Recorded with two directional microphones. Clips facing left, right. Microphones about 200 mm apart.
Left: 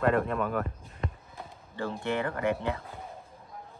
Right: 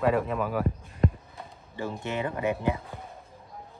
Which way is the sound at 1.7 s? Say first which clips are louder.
Left 1 dB; 15° right (ahead or behind).